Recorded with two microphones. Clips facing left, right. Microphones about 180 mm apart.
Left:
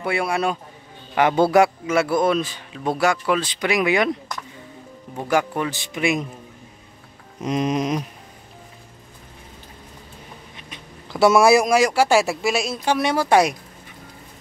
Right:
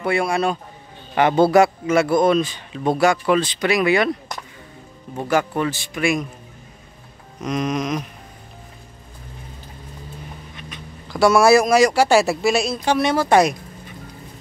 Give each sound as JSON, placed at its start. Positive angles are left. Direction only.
{"t": 0.0, "sound": "a man's voice", "side_deg": 5}
{"t": 5.1, "sound": "a man's voice", "side_deg": 10}
{"t": 7.4, "sound": "speech", "side_deg": 30}
{"t": 10.5, "sound": "speech", "side_deg": 25}